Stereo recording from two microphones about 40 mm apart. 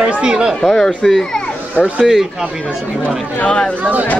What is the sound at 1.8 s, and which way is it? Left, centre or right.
Speech, left.